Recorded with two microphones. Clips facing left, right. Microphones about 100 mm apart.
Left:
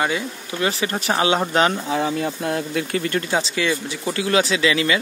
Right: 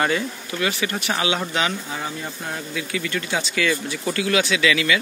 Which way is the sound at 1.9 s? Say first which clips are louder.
Left 8 dB; 75° left (ahead or behind).